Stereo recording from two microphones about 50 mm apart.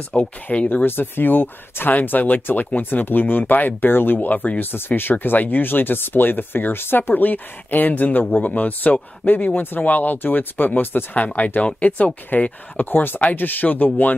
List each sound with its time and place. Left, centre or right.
0.1 s speech: left
11.1 s speech: left